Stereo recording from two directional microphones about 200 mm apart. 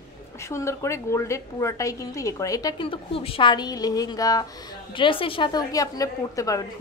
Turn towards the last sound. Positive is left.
turn(degrees=15)  # may be behind; listen again after turning